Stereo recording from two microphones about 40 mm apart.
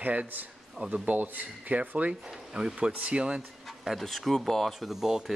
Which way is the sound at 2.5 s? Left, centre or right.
Right.